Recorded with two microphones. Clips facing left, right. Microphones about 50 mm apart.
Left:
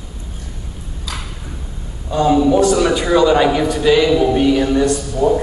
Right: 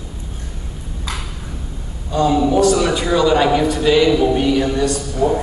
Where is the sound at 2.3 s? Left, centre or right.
Centre.